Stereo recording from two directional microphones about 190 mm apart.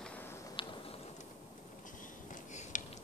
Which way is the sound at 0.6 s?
25° left (ahead or behind).